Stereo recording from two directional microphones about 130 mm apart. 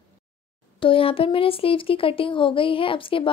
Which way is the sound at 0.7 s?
45° left (ahead or behind).